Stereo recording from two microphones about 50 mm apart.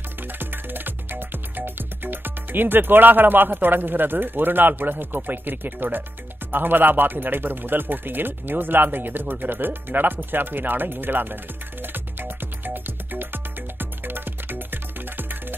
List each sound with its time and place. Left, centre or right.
0.4 s music: right
6.5 s speech: right
11.8 s music: right